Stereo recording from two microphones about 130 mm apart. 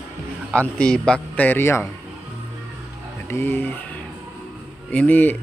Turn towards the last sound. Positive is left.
turn(degrees=15)  # may be behind; listen again after turning